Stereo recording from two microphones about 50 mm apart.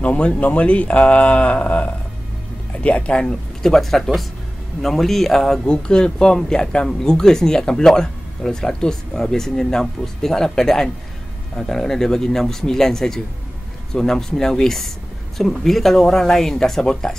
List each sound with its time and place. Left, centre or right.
0.0 s speech: left
3.6 s a man's voice: centre